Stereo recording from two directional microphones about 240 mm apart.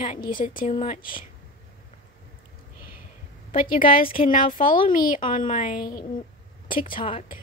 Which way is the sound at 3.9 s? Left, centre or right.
Left.